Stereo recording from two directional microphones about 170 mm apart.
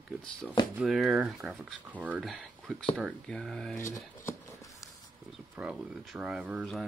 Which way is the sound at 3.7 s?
15° left (ahead or behind).